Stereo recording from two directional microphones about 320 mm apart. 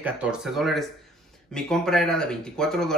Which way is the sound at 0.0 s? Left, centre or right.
Centre.